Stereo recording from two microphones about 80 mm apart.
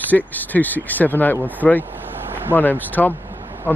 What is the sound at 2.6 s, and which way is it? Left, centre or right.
Speech, left.